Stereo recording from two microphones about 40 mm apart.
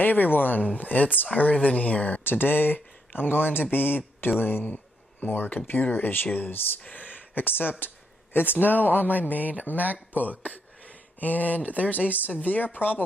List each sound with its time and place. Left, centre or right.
0.0 s speech: left
0.7 s speech: left
2.2 s speech: left
8.9 s mantra: right
9.2 s speech: left
9.6 s speech: right
10.1 s speech: left